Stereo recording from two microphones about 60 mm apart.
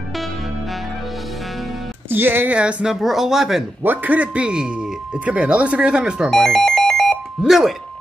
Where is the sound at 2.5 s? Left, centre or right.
Centre.